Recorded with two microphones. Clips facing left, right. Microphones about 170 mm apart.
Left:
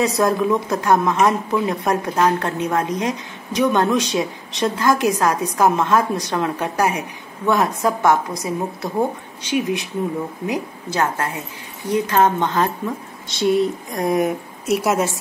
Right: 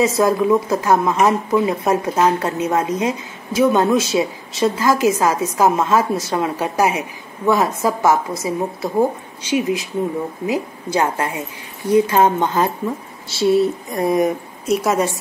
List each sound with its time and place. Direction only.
0.0 s speech: centre (ahead or behind)